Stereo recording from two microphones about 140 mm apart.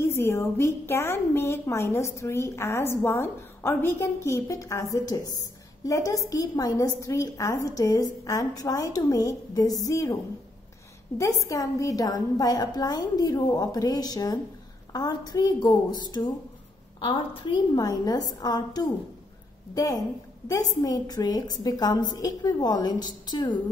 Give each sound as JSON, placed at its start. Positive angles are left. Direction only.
{"t": 0.0, "sound": "a woman's voice", "side_deg": 20}
{"t": 11.4, "sound": "a woman's voice", "side_deg": 25}
{"t": 17.7, "sound": "a woman's voice", "side_deg": 30}